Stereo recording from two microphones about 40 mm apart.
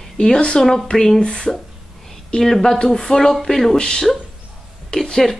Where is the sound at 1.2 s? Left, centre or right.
Left.